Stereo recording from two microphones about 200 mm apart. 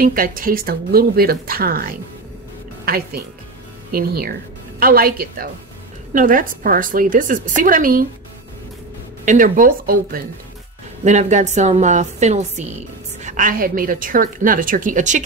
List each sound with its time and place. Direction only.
0.0 s a woman's voice: 45° right (ahead or behind)
9.2 s a woman's voice: 40° right (ahead or behind)